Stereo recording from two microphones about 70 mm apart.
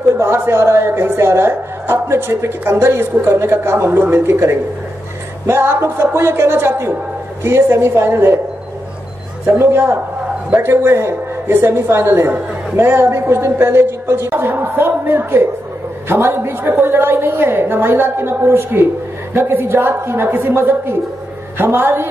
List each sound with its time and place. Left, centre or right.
0.2 s a woman's voice: right
9.5 s a woman's voice: right